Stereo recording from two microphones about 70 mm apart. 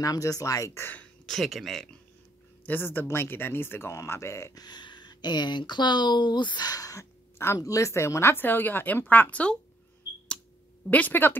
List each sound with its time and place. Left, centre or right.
0.0 s speech: left
0.7 s speech: left
1.2 s speech: centre
2.6 s speech: left
4.6 s speech: left; by 9.6 s centre
10.9 s speech: left